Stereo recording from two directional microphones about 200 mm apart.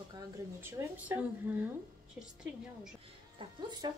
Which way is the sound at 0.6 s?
10° right (ahead or behind).